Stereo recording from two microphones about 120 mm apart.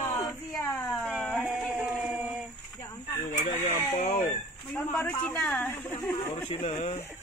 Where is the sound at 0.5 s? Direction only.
Centre (ahead or behind).